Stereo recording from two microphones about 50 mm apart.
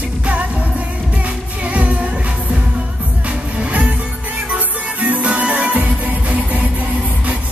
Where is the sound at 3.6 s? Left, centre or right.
Right.